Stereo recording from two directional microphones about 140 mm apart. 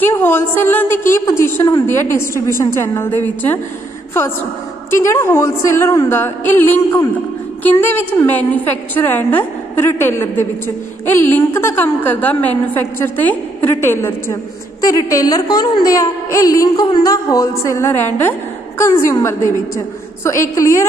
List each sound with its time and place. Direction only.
0.0 s a woman's voice: 15° left (ahead or behind)
4.9 s a woman's voice: 20° left (ahead or behind)